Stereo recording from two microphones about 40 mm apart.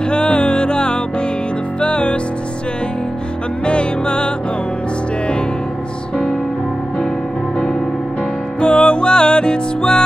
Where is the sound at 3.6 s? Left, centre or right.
Left.